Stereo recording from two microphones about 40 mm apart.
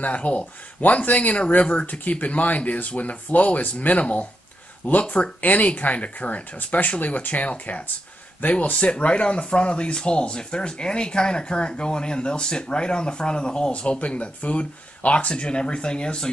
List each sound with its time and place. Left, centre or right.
0.0 s speech: left
8.7 s speech: left